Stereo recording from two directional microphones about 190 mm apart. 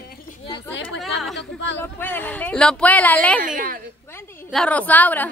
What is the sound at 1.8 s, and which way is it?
Speech, 10° left (ahead or behind).